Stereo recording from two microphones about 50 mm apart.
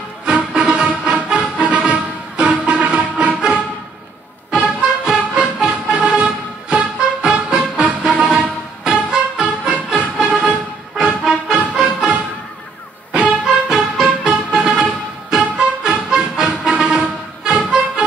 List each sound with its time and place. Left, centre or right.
0.2 s music: right
4.7 s music: centre
11.2 s music: centre